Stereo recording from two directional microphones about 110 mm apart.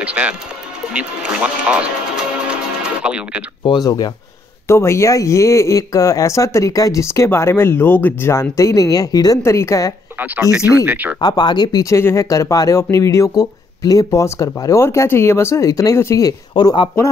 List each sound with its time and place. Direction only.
0.0 s speech: 10° right (ahead or behind)
2.3 s music: 10° right (ahead or behind)
3.6 s speech: 40° left (ahead or behind)
4.6 s speech: 25° left (ahead or behind)
10.1 s speech: 15° right (ahead or behind)
11.1 s speech: 40° left (ahead or behind)
16.5 s speech: 45° left (ahead or behind)